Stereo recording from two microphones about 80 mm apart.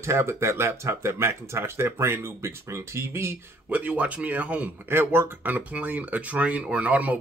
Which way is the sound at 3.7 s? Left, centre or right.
Centre.